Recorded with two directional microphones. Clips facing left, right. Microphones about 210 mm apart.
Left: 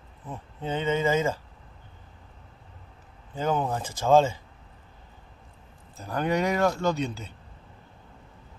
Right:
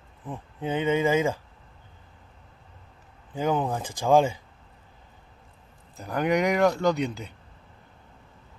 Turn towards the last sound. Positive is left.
turn(degrees=-15)  # may be behind; listen again after turning